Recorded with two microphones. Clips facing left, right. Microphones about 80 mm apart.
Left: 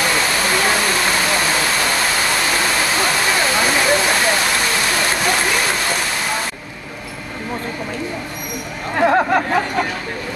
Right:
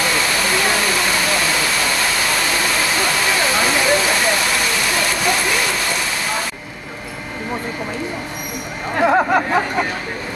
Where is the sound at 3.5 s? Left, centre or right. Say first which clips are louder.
Even; centre.